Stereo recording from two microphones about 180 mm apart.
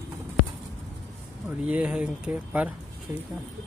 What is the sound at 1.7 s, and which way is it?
Speech, 5° right (ahead or behind).